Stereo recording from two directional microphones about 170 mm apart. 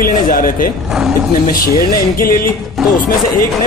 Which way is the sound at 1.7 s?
60° left (ahead or behind).